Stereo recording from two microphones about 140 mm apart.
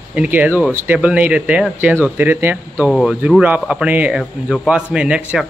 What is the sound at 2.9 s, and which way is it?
Speech, 5° left (ahead or behind).